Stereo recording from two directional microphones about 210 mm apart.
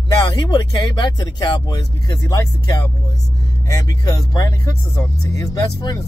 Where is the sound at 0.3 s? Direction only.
20° left (ahead or behind).